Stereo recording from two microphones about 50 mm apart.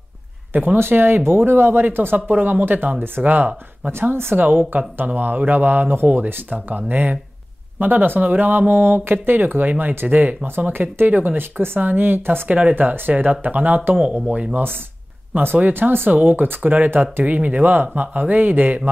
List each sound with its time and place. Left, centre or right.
0.7 s speech: right
4.0 s speech: right
4.4 s speech: right
12.4 s speech: right
14.5 s speech: right